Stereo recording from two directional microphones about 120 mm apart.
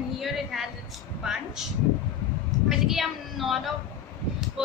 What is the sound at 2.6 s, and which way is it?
Speech, centre (ahead or behind).